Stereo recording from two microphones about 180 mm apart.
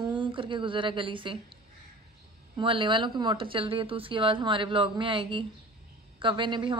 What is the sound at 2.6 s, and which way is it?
Speech, 30° right (ahead or behind).